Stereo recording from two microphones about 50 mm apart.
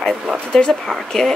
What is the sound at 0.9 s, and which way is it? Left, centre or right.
Speech, centre.